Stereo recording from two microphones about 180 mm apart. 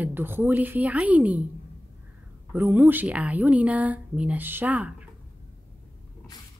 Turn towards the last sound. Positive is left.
turn(degrees=-5)  # may be behind; listen again after turning